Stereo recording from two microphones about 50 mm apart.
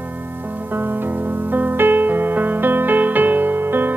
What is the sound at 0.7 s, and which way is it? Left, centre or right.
Music, right.